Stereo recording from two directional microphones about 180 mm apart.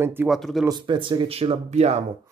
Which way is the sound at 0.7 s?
25° right (ahead or behind).